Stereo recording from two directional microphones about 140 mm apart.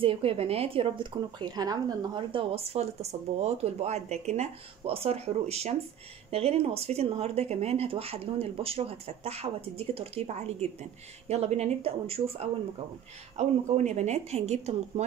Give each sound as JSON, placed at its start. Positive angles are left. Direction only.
{"t": 0.0, "sound": "speech", "side_deg": -40}